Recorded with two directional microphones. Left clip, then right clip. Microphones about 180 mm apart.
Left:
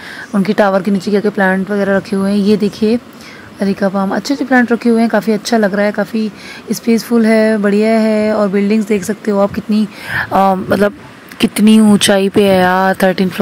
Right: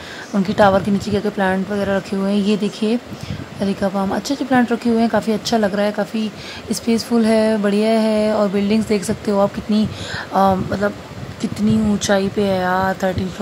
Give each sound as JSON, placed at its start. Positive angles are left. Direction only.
{"t": 0.3, "sound": "speech", "side_deg": 30}